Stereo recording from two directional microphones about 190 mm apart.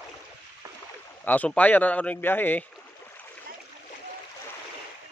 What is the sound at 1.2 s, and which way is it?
Speech, 10° left (ahead or behind).